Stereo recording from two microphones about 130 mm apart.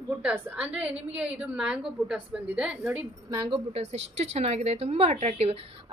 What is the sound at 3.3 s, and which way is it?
Speech, 40° right (ahead or behind).